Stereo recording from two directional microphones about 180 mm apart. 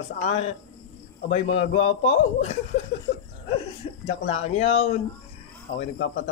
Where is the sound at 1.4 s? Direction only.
90° left.